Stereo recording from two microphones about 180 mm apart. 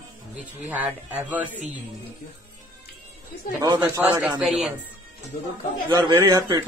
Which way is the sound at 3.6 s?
20° right (ahead or behind).